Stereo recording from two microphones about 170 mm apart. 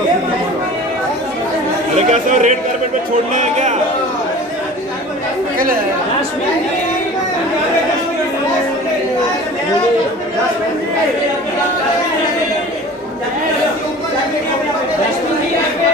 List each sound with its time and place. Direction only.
2.0 s speech: 45° right (ahead or behind)